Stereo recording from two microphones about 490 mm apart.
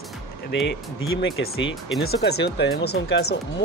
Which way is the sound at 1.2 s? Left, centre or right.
Left.